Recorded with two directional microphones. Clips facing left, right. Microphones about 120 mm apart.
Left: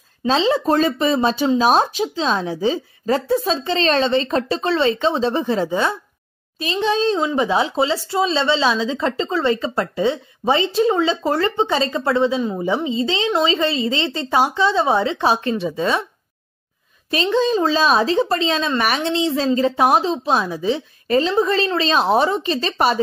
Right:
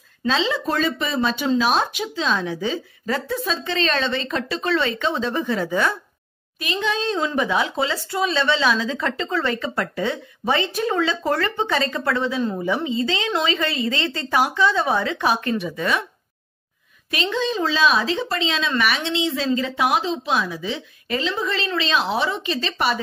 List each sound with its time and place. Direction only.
0.3 s a woman's voice: 40° left (ahead or behind)
17.1 s a woman's voice: 35° left (ahead or behind)